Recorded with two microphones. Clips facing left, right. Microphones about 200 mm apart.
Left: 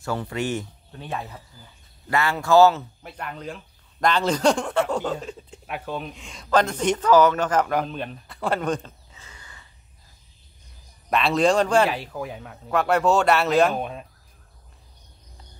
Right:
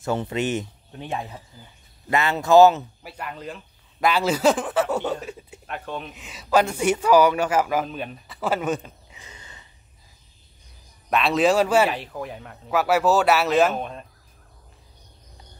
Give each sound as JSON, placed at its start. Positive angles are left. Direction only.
{"t": 0.0, "sound": "speech", "side_deg": -20}
{"t": 3.0, "sound": "speech", "side_deg": -5}
{"t": 5.7, "sound": "speech", "side_deg": 5}
{"t": 11.1, "sound": "speech", "side_deg": 0}